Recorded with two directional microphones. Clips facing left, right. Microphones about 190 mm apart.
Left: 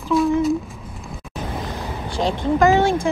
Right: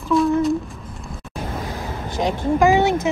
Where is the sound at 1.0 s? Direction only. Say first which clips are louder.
Even; centre (ahead or behind).